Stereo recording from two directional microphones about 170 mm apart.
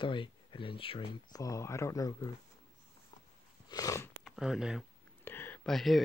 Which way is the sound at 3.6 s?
20° left (ahead or behind).